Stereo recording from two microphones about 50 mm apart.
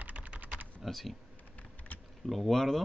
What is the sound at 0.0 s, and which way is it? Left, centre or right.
Typing, right.